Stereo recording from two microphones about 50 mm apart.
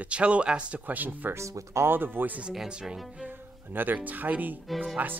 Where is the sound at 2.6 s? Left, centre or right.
Centre.